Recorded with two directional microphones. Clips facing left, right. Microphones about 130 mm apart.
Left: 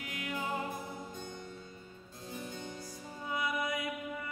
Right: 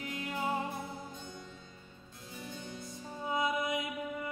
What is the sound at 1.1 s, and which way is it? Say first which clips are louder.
Harpsichord: left 2 dB; 50° left (ahead or behind).